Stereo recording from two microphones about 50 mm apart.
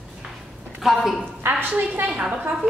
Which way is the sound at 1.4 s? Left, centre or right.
Right.